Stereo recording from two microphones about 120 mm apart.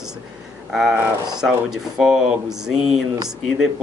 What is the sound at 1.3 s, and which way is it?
Speech, 5° right (ahead or behind).